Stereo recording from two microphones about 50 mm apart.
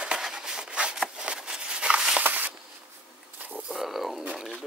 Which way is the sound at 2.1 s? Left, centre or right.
Right.